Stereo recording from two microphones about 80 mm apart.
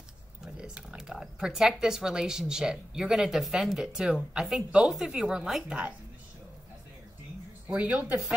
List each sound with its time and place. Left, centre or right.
0.5 s speech: centre
7.6 s speech: centre